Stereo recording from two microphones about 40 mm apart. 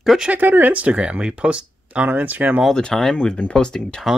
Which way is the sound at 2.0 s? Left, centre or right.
Right.